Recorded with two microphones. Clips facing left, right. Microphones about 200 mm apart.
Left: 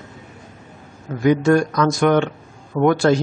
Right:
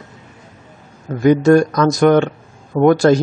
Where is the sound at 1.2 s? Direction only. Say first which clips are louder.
Right 4 dB; 40° right (ahead or behind).